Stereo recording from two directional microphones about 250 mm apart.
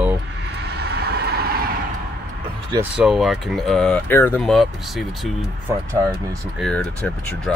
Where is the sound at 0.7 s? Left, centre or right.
Right.